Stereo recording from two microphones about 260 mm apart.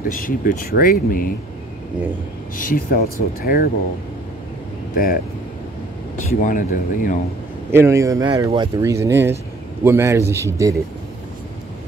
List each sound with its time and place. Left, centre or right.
0.1 s speech: left
2.5 s speech: left
4.9 s speech: left
6.4 s speech: left
7.7 s speech: centre